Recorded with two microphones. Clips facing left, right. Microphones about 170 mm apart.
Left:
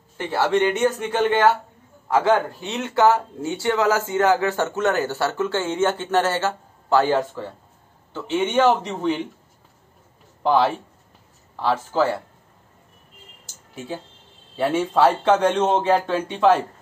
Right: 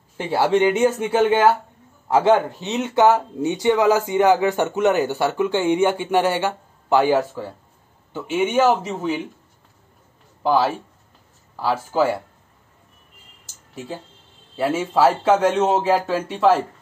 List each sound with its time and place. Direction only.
0.2 s speech: 10° right (ahead or behind)
2.0 s speech: 25° right (ahead or behind); by 9.3 s 5° right (ahead or behind)
10.4 s a man's voice: 5° right (ahead or behind)
14.5 s a man's voice: centre (ahead or behind)